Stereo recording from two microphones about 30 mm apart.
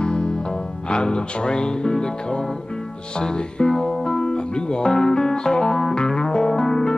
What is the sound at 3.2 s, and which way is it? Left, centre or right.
Music, left.